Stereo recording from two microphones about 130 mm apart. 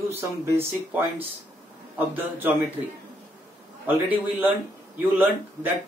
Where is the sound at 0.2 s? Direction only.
15° right (ahead or behind).